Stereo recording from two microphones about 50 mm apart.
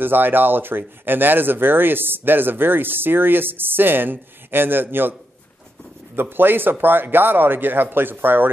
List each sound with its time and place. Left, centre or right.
0.0 s speech: right
6.1 s speech: right